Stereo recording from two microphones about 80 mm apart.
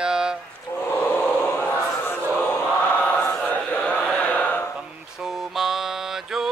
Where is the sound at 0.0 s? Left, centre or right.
Centre.